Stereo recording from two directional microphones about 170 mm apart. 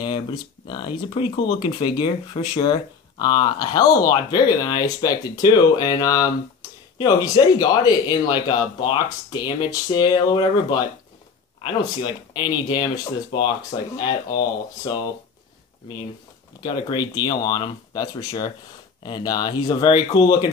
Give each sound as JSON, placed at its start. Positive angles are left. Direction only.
{"t": 0.0, "sound": "speech", "side_deg": 25}
{"t": 11.6, "sound": "speech", "side_deg": 25}
{"t": 16.6, "sound": "speech", "side_deg": 25}